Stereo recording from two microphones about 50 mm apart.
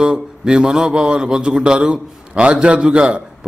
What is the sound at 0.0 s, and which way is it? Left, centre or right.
A man's voice, centre.